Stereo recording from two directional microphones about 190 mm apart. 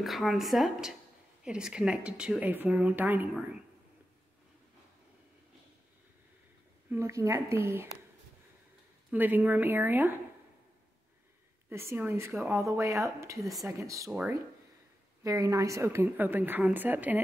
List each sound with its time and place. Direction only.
0.0 s speech: centre (ahead or behind)
6.9 s a woman's voice: 15° right (ahead or behind)
9.1 s a woman's voice: 10° right (ahead or behind)
11.7 s a woman's voice: 15° right (ahead or behind)
13.4 s speech: centre (ahead or behind)
13.7 s a woman's voice: 15° right (ahead or behind)
15.2 s a woman's voice: 20° right (ahead or behind)